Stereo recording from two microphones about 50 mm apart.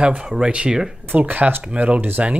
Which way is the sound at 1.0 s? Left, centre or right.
Right.